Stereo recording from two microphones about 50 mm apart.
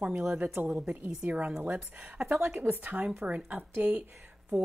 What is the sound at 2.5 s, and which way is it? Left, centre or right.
Speech, right.